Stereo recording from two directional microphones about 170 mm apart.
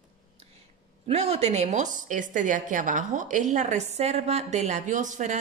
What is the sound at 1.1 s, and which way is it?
A woman's voice, 40° right (ahead or behind).